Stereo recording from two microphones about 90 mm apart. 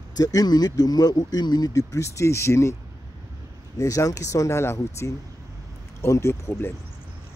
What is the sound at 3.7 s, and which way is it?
Speech, 40° left (ahead or behind).